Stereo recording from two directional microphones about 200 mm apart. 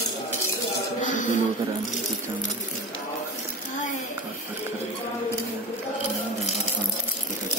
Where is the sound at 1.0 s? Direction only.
40° left (ahead or behind).